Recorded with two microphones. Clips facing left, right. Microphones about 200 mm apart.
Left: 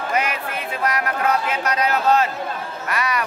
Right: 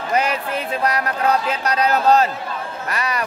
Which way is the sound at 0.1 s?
35° right (ahead or behind).